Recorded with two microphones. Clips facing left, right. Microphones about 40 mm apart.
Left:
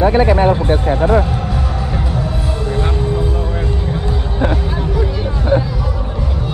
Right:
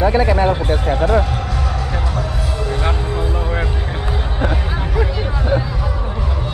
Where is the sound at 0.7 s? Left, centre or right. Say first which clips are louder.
Left 3 dB; left.